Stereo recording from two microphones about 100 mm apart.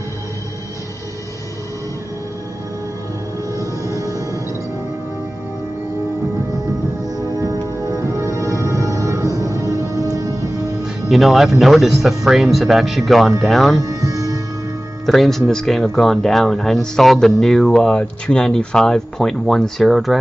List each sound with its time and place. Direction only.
3.5 s music: 35° right (ahead or behind)
7.3 s music: 35° right (ahead or behind)
11.1 s speech: centre (ahead or behind)
13.8 s music: 35° right (ahead or behind)
15.0 s speech: centre (ahead or behind)